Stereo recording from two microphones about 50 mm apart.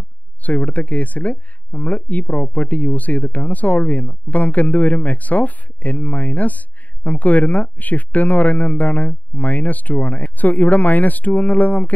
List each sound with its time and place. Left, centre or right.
0.4 s speech: left